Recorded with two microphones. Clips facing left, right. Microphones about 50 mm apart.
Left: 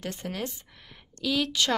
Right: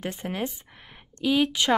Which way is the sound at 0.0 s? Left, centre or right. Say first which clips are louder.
Right 3 dB; right.